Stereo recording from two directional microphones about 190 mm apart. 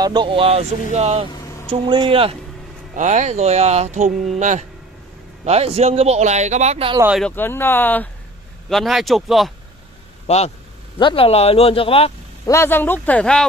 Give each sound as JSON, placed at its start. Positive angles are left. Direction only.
{"t": 0.0, "sound": "speech", "side_deg": -25}
{"t": 1.3, "sound": "vehicle", "side_deg": 20}
{"t": 1.7, "sound": "a man's voice", "side_deg": -25}
{"t": 7.2, "sound": "speech", "side_deg": 10}
{"t": 10.2, "sound": "speech", "side_deg": 35}
{"t": 12.4, "sound": "speech", "side_deg": 10}